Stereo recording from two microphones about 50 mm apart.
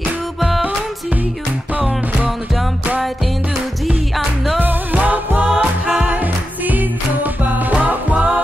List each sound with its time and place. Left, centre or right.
0.4 s music: centre
4.6 s music: right
7.7 s music: right